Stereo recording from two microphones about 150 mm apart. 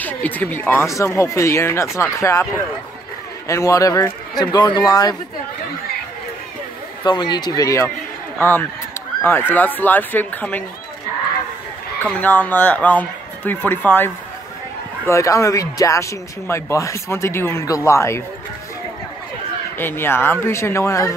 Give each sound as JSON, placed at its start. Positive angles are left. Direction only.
{"t": 0.0, "sound": "speech", "side_deg": 10}
{"t": 7.0, "sound": "a man's voice", "side_deg": 30}
{"t": 12.0, "sound": "a man's voice", "side_deg": 10}
{"t": 19.8, "sound": "a man's voice", "side_deg": 15}